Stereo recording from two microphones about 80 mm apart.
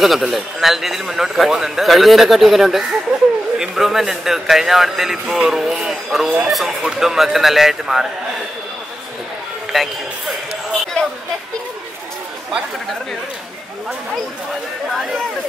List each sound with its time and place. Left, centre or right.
0.0 s a man's voice: centre
9.7 s a man's voice: centre